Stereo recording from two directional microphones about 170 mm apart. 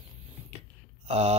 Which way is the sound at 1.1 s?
40° right (ahead or behind).